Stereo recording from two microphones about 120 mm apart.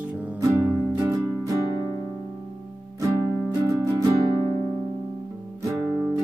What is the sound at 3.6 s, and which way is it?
Music, 25° right (ahead or behind).